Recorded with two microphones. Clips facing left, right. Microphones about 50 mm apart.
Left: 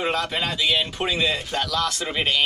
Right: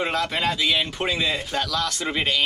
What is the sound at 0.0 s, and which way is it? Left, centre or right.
Speech, centre.